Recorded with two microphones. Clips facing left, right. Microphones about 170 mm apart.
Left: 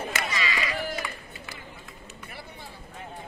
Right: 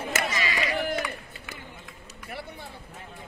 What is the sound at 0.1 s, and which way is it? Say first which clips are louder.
Run: right 2 dB; 50° right (ahead or behind).